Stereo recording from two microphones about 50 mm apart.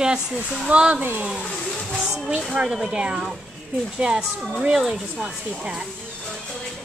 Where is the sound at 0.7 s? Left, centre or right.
Right.